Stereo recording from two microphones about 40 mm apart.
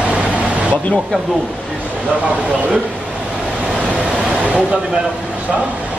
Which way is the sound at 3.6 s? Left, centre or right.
Right.